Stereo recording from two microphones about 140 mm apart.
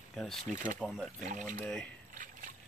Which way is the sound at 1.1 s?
65° right (ahead or behind).